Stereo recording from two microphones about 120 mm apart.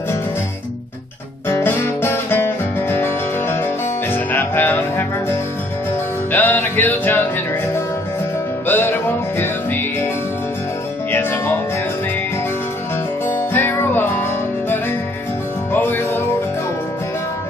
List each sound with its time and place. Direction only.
1.5 s music: 20° left (ahead or behind)
8.6 s music: 20° left (ahead or behind)
11.1 s music: 15° left (ahead or behind)
13.3 s music: 15° left (ahead or behind)
15.7 s music: 15° left (ahead or behind)